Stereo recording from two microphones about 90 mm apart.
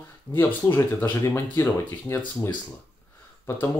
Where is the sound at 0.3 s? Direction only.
25° left (ahead or behind).